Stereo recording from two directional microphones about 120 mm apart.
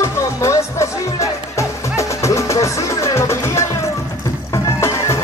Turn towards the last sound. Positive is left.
turn(degrees=25)  # may be behind; listen again after turning